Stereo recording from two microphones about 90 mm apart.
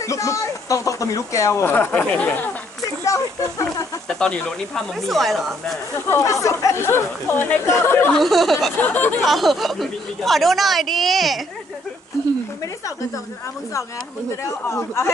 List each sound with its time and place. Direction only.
0.0 s speech: 35° left (ahead or behind); by 2.5 s 15° left (ahead or behind)
3.0 s a sound: 35° left (ahead or behind)
4.1 s a woman's voice: 10° left (ahead or behind)
6.0 s speech: 30° left (ahead or behind)
8.1 s a woman's voice: centre (ahead or behind)
8.8 s speech: 20° left (ahead or behind)
9.2 s a woman's voice: centre (ahead or behind)
14.7 s speech: 30° left (ahead or behind)